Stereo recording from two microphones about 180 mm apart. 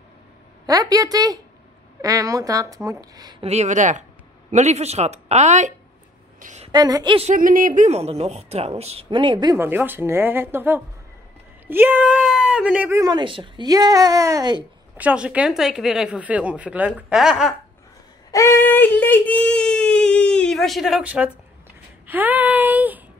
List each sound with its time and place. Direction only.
0.7 s a woman's voice: 20° right (ahead or behind)
3.4 s a woman's voice: 40° right (ahead or behind)
6.7 s a woman's voice: 20° right (ahead or behind)
7.2 s speech: 50° right (ahead or behind); by 9.6 s 25° right (ahead or behind)
9.6 s speech: 10° right (ahead or behind)
15.0 s speech: 5° right (ahead or behind)
18.3 s speech: 15° left (ahead or behind); by 23.0 s 10° right (ahead or behind)